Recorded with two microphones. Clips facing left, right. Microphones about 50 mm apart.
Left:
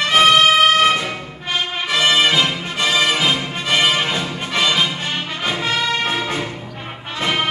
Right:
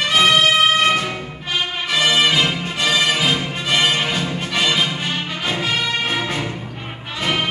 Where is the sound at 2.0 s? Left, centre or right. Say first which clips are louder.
Left 1 dB; left; by 6.2 s centre.